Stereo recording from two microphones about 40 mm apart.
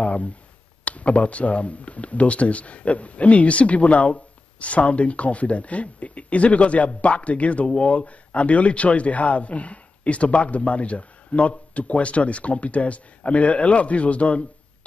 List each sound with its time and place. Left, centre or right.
0.0 s speech: left